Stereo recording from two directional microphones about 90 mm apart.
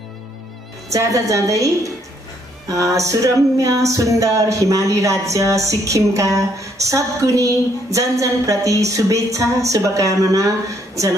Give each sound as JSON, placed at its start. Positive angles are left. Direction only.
{"t": 0.8, "sound": "music", "side_deg": -35}
{"t": 2.7, "sound": "music", "side_deg": -35}